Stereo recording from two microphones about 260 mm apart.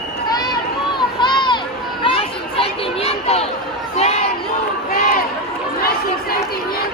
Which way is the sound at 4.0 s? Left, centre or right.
Left.